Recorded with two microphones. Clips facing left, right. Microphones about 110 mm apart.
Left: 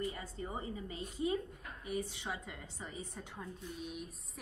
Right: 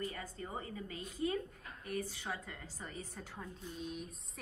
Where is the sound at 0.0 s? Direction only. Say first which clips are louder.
Left 2 dB; 25° left (ahead or behind).